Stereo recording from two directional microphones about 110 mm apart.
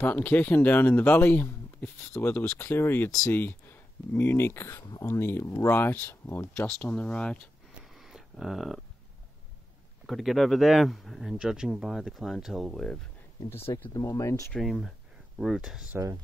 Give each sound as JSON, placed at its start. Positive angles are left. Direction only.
{"t": 0.0, "sound": "speech", "side_deg": 15}
{"t": 7.8, "sound": "a sound", "side_deg": 0}
{"t": 10.0, "sound": "speech", "side_deg": 0}
{"t": 13.5, "sound": "speech", "side_deg": 20}
{"t": 14.5, "sound": "speech", "side_deg": 0}